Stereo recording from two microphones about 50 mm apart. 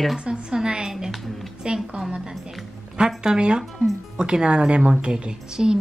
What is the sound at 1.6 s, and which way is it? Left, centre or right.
A woman's voice, centre.